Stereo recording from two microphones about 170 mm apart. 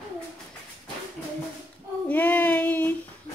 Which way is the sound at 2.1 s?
10° left (ahead or behind).